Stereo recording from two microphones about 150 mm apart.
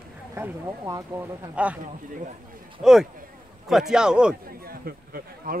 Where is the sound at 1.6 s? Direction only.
10° right (ahead or behind).